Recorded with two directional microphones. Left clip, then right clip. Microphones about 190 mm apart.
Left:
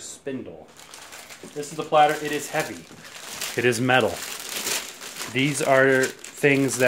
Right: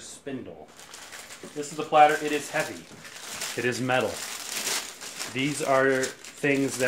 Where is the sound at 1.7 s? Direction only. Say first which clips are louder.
Even; 40° left (ahead or behind).